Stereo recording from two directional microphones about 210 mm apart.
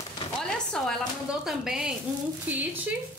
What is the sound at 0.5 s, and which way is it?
A woman's voice, 5° left (ahead or behind).